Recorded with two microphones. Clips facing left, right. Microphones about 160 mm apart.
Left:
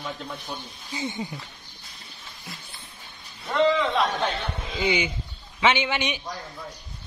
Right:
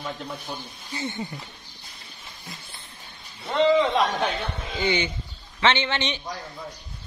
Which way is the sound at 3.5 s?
20° right (ahead or behind).